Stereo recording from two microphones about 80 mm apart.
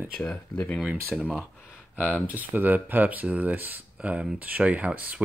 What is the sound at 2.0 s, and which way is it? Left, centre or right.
Speech, centre.